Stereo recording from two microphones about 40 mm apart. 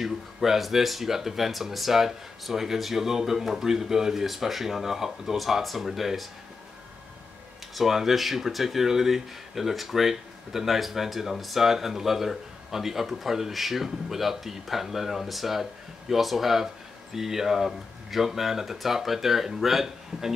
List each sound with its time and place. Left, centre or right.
0.0 s speech: centre
7.7 s speech: centre